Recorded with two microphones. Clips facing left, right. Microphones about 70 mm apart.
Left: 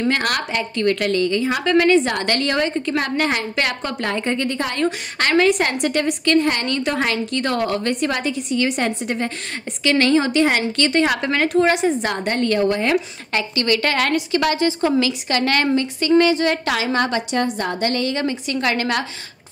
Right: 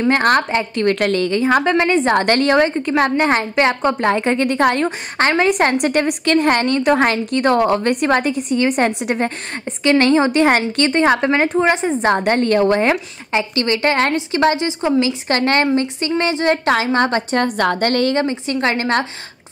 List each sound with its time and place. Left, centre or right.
0.1 s a woman's voice: right
0.7 s a woman's voice: right
1.6 s a woman's voice: right
2.0 s a woman's voice: right
4.2 s a woman's voice: right
4.7 s a woman's voice: right
5.5 s a woman's voice: right
8.1 s a woman's voice: right
13.3 s a woman's voice: right
15.2 s a woman's voice: right
18.2 s a woman's voice: right